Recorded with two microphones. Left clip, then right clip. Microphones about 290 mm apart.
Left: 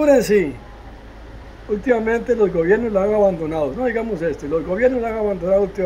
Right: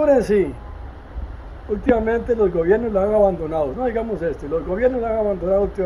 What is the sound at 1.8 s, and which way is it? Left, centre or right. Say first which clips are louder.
Speech: even; centre.